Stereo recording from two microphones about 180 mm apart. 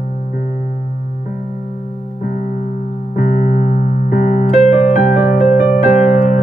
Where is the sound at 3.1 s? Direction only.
45° left (ahead or behind).